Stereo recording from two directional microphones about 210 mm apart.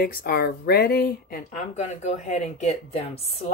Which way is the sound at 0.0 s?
45° left (ahead or behind).